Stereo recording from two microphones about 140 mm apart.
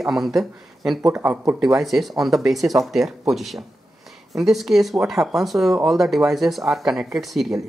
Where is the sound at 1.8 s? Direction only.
Centre (ahead or behind).